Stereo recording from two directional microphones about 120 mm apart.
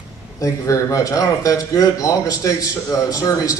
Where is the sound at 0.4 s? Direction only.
25° left (ahead or behind).